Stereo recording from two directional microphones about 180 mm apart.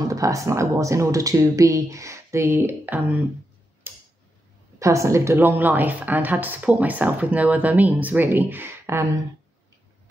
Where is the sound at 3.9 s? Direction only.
10° right (ahead or behind).